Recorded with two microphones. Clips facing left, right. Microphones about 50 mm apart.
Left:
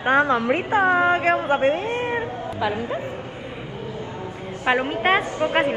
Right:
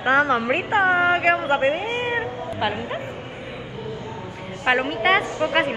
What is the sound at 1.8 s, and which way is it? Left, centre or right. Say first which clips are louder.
Cat: even; right.